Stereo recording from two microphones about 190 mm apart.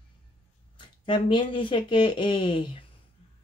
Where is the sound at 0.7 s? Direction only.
25° left (ahead or behind).